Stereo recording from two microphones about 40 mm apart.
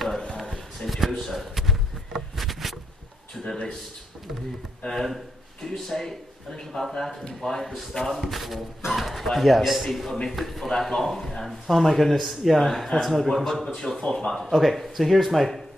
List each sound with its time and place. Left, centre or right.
0.4 s a sound: centre
3.4 s speech: centre
4.8 s speech: centre